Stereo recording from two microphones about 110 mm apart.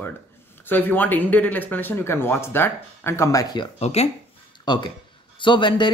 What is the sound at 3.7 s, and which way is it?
Speech, 70° left (ahead or behind).